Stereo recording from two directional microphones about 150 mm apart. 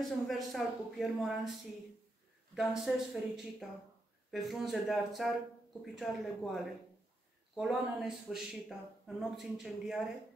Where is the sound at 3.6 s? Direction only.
5° right (ahead or behind).